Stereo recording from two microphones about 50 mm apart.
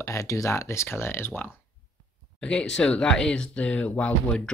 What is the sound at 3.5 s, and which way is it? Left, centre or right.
Speech, left.